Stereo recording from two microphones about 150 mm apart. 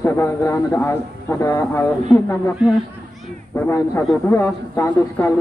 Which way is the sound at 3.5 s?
15° left (ahead or behind).